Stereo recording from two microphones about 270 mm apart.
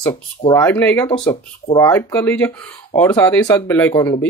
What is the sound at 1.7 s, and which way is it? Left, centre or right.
Speech, centre.